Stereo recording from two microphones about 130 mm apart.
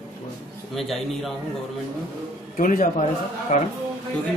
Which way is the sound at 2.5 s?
75° left (ahead or behind).